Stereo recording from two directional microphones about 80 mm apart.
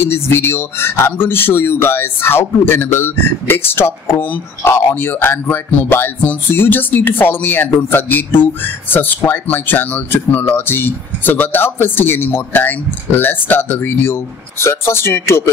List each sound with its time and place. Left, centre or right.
0.0 s speech: left